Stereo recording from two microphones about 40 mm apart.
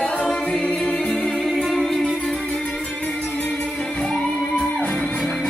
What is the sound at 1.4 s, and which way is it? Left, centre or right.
Music, centre.